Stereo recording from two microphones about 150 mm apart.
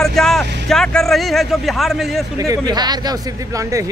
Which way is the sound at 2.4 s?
25° right (ahead or behind).